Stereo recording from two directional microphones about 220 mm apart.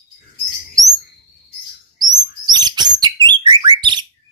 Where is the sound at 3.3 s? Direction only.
20° right (ahead or behind).